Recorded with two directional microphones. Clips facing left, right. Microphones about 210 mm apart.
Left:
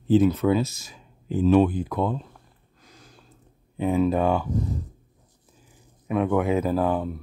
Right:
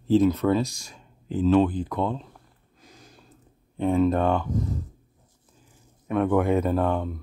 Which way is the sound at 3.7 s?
5° left (ahead or behind).